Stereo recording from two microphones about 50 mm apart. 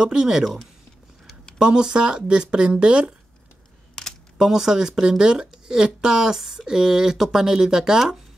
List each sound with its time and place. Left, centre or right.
0.0 s speech: centre
1.6 s speech: centre
4.4 s speech: centre